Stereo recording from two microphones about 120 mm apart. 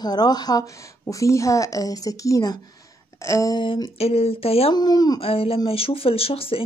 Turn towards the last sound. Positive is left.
turn(degrees=50)  # may be behind; listen again after turning